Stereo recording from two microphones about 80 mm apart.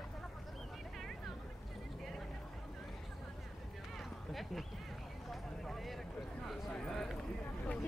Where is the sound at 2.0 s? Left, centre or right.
Centre.